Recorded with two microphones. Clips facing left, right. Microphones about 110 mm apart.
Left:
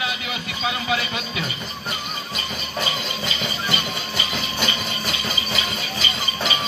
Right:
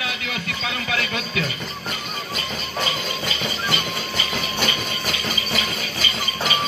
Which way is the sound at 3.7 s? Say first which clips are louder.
Right 1 dB; 25° left (ahead or behind).